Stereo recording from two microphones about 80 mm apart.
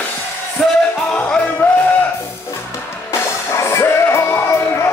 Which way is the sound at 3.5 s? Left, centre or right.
Left.